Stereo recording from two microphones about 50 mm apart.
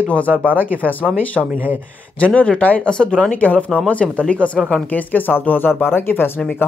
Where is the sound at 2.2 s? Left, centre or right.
Left.